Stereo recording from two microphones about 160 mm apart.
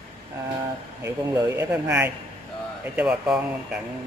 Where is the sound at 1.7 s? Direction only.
10° right (ahead or behind).